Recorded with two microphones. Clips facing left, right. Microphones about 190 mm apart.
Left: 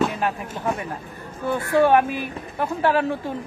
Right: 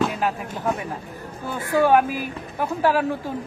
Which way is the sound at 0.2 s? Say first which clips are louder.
Right 1 dB; centre (ahead or behind).